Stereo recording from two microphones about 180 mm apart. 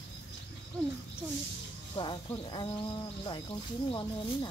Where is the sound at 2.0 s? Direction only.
25° left (ahead or behind).